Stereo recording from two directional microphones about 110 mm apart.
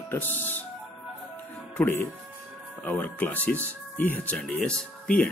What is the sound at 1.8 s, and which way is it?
Speech, 20° left (ahead or behind).